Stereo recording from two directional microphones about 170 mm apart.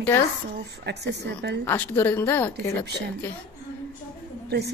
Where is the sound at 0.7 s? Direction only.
80° right.